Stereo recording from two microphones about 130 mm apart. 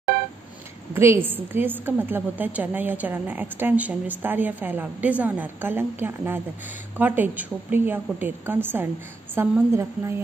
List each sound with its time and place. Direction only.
0.9 s a woman's voice: 20° right (ahead or behind)